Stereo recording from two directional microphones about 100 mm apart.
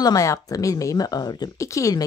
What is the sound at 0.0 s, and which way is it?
Speech, 35° left (ahead or behind).